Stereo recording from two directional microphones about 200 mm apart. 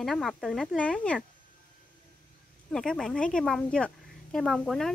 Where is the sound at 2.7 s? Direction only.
5° left (ahead or behind).